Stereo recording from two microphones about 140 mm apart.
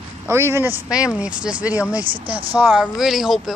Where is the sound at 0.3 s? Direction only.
20° right (ahead or behind); by 3.5 s centre (ahead or behind).